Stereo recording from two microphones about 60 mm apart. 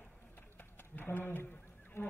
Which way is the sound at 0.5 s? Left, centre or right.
Left.